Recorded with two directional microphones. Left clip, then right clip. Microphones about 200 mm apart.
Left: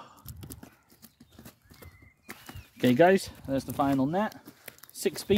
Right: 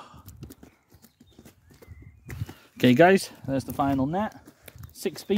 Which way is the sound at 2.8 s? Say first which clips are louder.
Right 3 dB; 60° right (ahead or behind).